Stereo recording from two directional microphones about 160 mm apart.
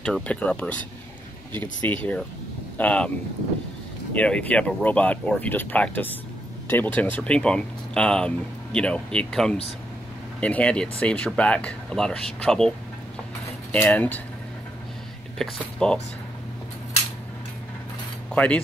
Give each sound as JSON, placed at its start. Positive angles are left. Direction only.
{"t": 0.0, "sound": "speech", "side_deg": 5}
{"t": 4.1, "sound": "speech", "side_deg": 10}
{"t": 15.3, "sound": "speech", "side_deg": 5}
{"t": 18.3, "sound": "speech", "side_deg": 10}